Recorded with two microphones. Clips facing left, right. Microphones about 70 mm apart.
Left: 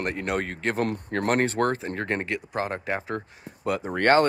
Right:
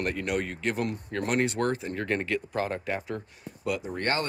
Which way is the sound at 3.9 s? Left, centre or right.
Left.